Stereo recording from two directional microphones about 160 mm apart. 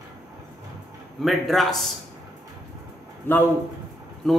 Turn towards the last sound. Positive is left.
turn(degrees=5)  # may be behind; listen again after turning